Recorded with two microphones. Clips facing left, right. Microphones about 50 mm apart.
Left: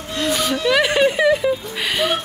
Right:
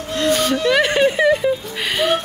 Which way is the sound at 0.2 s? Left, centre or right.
Centre.